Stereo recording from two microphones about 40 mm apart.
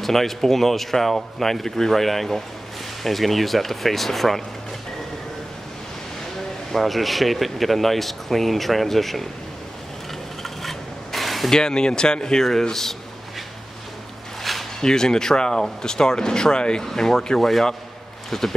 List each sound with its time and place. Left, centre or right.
0.0 s speech: centre
6.7 s speech: centre
10.4 s filing: centre
11.5 s speech: centre
14.4 s a sound: centre
14.8 s speech: centre